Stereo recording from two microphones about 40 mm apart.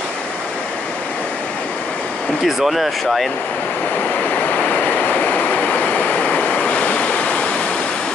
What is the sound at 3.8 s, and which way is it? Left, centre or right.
Vehicle, left.